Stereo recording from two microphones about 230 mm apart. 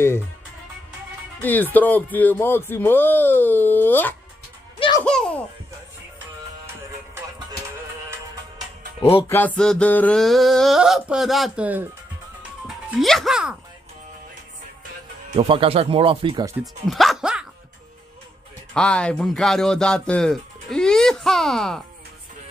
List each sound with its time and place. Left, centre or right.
1.4 s speech: centre
4.7 s music: left
5.0 s speech: centre
9.6 s speech: centre
15.3 s speech: right
16.8 s music: centre
18.7 s speech: centre